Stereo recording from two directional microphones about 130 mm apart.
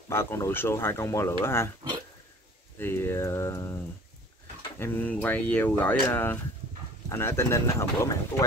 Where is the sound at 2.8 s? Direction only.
15° left (ahead or behind).